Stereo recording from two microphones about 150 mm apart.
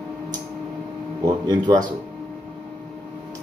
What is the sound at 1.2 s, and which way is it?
Speech, 25° right (ahead or behind).